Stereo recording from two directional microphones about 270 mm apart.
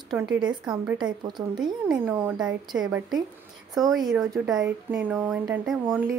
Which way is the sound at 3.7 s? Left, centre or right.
Centre.